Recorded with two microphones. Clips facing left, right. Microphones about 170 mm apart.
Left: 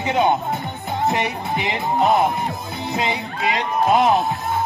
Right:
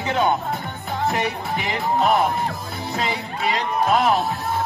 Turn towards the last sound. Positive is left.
turn(degrees=20)  # may be behind; listen again after turning